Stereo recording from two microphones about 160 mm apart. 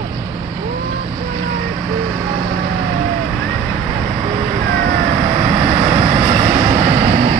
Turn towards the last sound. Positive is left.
turn(degrees=-50)  # may be behind; listen again after turning